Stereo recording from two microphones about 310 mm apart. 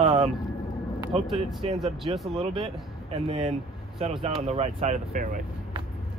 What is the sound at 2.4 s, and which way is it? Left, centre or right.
Speech, centre.